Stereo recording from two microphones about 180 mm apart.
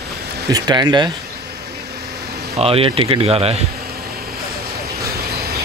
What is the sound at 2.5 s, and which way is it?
A man's voice, 35° right (ahead or behind).